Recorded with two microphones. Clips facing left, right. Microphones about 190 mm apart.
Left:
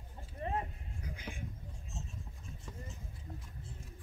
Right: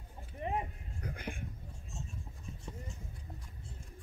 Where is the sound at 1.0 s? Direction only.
60° right (ahead or behind).